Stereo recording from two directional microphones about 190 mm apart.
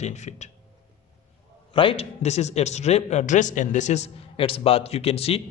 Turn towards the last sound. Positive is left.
turn(degrees=30)  # may be behind; listen again after turning